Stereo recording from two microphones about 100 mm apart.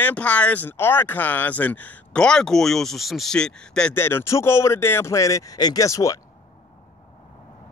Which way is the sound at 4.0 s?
25° left (ahead or behind).